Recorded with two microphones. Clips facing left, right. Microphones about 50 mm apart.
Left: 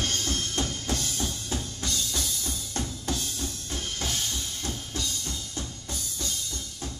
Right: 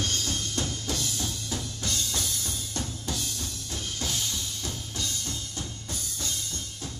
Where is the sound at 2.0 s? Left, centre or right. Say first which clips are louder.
Left 1 dB; right.